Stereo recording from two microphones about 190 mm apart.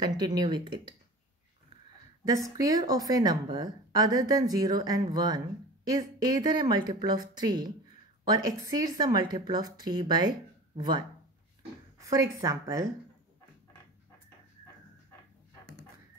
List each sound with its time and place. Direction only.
0.0 s a woman's voice: 20° right (ahead or behind)
2.2 s a woman's voice: 20° right (ahead or behind)
12.1 s speech: 15° right (ahead or behind)